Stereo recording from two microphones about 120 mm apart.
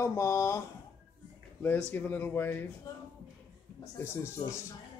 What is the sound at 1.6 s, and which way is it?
Speech, 15° left (ahead or behind).